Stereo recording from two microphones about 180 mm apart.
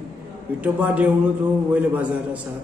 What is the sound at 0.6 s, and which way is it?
A man's voice, 10° right (ahead or behind).